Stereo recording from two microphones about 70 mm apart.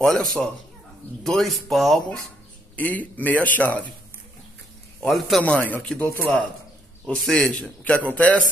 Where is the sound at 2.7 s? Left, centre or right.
Left.